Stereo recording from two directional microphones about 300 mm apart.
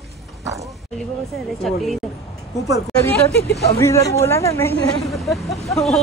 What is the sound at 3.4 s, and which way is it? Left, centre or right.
Speech, left.